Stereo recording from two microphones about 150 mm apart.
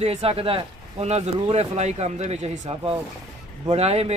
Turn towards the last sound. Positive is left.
turn(degrees=-45)  # may be behind; listen again after turning